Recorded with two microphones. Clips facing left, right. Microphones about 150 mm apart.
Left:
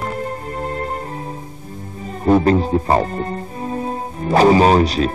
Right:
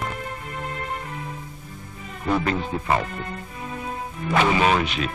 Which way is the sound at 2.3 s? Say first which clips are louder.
Left 10 dB; 40° left (ahead or behind).